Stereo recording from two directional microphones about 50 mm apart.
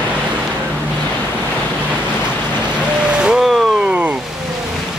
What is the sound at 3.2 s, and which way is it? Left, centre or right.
Vehicle, centre.